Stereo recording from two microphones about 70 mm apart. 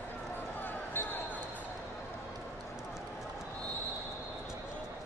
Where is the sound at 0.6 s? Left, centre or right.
Left.